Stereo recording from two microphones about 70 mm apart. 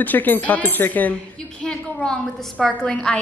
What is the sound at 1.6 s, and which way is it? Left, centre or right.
A woman's voice, centre.